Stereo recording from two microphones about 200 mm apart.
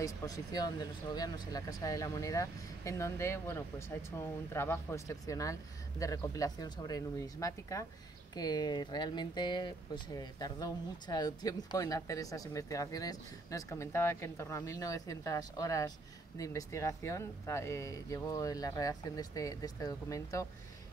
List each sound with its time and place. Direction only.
0.0 s speech: 20° left (ahead or behind)